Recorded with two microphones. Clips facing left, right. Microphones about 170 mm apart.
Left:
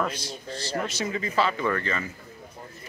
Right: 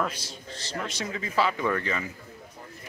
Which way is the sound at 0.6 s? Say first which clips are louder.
Left 4 dB; 5° left (ahead or behind).